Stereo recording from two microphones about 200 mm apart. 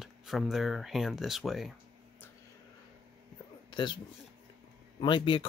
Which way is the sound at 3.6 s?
25° left (ahead or behind).